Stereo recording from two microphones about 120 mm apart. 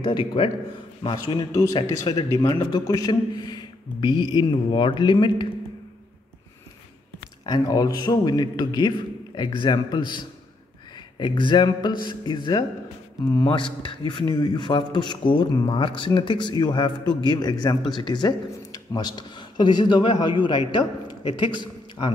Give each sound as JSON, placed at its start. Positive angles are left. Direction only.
{"t": 0.0, "sound": "a man's voice", "side_deg": 45}
{"t": 7.4, "sound": "a man's voice", "side_deg": 35}